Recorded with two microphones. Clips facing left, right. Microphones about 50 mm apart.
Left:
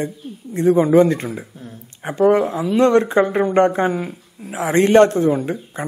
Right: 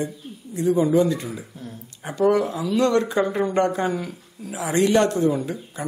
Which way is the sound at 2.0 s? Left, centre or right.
Left.